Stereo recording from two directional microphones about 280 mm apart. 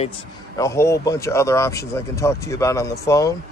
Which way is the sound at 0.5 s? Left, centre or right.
Centre.